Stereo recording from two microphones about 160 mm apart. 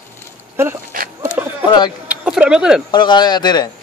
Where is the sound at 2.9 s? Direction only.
25° left (ahead or behind).